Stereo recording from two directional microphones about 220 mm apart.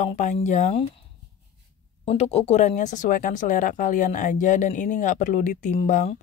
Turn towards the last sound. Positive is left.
turn(degrees=30)  # may be behind; listen again after turning